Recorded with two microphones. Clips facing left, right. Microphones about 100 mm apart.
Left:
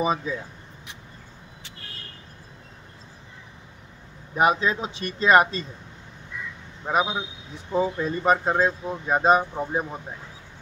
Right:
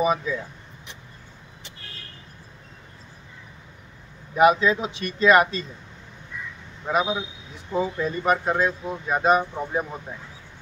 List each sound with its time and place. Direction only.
0.0 s speech: 30° left (ahead or behind)
4.4 s speech: 30° left (ahead or behind)
6.9 s speech: 25° left (ahead or behind)